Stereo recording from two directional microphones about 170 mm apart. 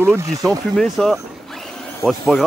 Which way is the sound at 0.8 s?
Centre (ahead or behind).